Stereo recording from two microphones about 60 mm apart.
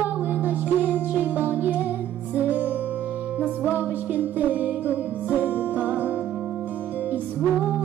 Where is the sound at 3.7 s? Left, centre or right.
Right.